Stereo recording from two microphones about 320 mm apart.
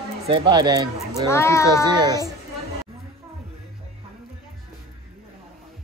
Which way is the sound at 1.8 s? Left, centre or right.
Centre.